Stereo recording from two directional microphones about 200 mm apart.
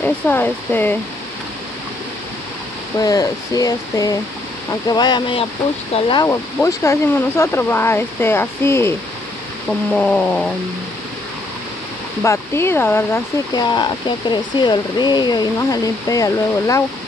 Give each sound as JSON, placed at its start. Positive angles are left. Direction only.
{"t": 0.0, "sound": "speech", "side_deg": 10}
{"t": 3.0, "sound": "speech", "side_deg": 20}
{"t": 9.7, "sound": "cat", "side_deg": 5}
{"t": 12.2, "sound": "speech", "side_deg": 10}